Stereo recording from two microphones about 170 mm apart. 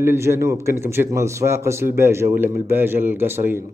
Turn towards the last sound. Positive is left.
turn(degrees=-15)  # may be behind; listen again after turning